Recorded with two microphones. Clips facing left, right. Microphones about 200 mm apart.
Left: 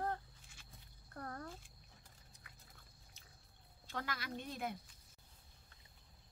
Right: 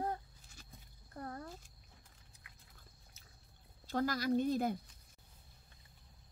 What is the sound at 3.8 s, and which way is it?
Speech, 40° right (ahead or behind).